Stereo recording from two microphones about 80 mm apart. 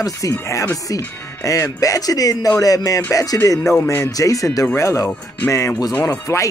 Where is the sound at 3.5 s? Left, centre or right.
Centre.